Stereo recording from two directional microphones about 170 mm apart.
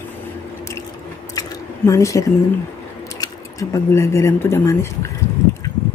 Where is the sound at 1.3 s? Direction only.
20° left (ahead or behind).